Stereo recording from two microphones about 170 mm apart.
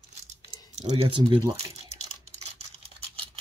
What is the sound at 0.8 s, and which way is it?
Speech, 35° right (ahead or behind).